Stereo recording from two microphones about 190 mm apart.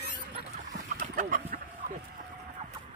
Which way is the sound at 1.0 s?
45° right (ahead or behind).